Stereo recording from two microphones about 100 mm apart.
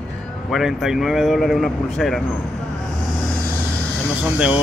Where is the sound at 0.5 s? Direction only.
5° right (ahead or behind).